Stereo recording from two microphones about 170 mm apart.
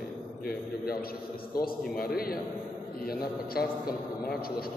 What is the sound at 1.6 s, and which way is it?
Speech, 60° left (ahead or behind).